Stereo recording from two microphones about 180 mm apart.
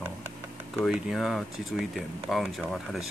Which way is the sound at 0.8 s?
5° right (ahead or behind).